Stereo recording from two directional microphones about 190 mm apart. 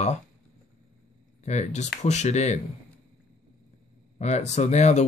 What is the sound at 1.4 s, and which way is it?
Speech, 35° left (ahead or behind).